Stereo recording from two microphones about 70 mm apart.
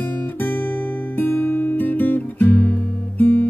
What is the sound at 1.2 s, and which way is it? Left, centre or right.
Music, left.